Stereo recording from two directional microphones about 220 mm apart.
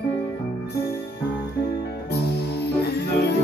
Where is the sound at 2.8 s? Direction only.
45° left (ahead or behind).